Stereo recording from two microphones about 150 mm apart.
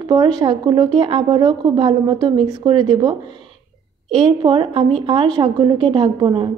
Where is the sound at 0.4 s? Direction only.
30° right (ahead or behind).